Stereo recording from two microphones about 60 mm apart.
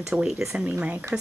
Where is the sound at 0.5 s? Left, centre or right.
Right.